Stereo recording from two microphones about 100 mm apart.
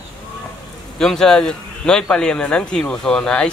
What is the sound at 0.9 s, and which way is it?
Speech, 5° left (ahead or behind).